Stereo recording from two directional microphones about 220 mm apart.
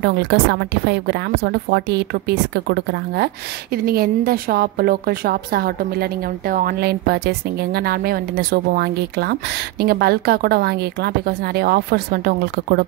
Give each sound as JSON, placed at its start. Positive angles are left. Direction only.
{"t": 0.0, "sound": "a woman's voice", "side_deg": -50}